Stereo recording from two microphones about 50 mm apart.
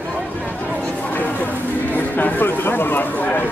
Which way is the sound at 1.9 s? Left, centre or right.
Left.